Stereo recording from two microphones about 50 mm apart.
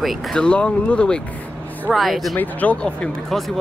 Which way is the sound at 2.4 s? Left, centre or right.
Left.